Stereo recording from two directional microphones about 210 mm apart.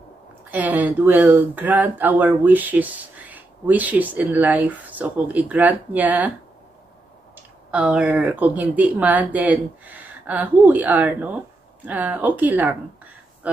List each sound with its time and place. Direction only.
0.5 s speech: 5° right (ahead or behind)
7.7 s speech: 5° right (ahead or behind)